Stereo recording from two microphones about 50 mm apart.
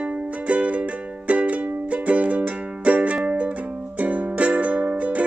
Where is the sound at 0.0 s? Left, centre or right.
Right.